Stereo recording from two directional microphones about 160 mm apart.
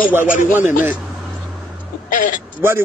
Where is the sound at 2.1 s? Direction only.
55° left (ahead or behind).